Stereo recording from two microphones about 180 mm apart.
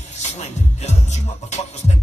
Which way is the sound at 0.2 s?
40° left (ahead or behind).